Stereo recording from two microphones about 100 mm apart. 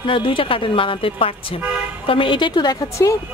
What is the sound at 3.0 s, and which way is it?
Speech, 30° left (ahead or behind).